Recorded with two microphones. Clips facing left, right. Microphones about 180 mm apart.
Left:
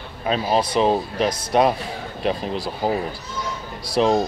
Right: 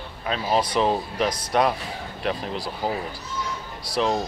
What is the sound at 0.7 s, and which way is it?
Speech, 20° left (ahead or behind).